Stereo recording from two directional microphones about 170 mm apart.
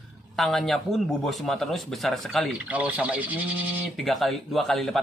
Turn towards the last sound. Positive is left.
turn(degrees=0)  # may be behind; listen again after turning